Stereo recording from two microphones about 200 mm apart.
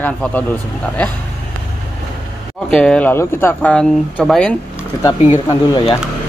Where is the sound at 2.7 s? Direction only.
5° left (ahead or behind).